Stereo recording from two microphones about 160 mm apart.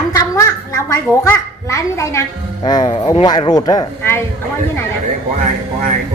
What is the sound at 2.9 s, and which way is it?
A woman's voice, 30° left (ahead or behind).